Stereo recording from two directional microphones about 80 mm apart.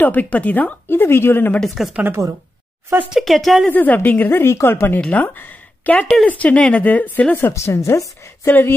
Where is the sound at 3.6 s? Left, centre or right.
Left.